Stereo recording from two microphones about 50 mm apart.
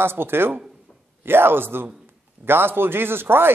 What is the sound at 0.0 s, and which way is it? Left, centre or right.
A man's voice, right.